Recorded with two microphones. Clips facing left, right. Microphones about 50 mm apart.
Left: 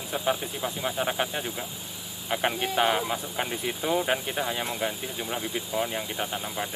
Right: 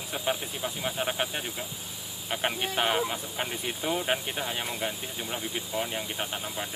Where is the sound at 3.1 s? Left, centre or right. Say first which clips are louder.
Left 3 dB; centre.